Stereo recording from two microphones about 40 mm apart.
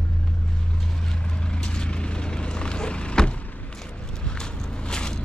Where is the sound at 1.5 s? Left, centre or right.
Left.